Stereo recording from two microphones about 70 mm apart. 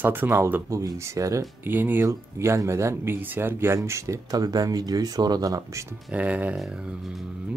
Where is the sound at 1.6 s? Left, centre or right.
Right.